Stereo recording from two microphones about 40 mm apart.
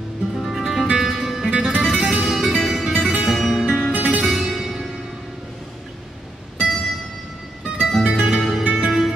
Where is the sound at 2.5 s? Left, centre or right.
Centre.